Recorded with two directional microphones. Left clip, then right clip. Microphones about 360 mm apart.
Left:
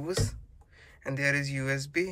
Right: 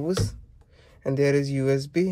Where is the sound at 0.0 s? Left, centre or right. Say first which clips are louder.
Right 5 dB; centre.